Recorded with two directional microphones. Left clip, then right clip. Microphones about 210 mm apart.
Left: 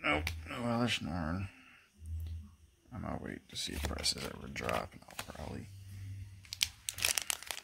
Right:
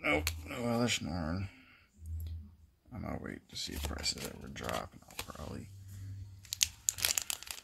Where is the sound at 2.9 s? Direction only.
5° right (ahead or behind); by 5.3 s 15° left (ahead or behind).